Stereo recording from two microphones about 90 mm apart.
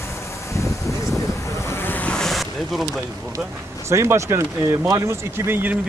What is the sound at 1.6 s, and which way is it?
Waves, 25° left (ahead or behind).